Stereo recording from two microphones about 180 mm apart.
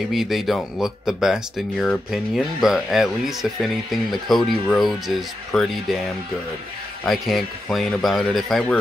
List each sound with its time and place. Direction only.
0.1 s speech: centre (ahead or behind)
7.1 s speech: centre (ahead or behind)